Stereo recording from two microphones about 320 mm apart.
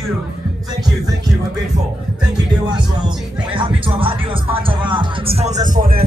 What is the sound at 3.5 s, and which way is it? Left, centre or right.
Music, centre.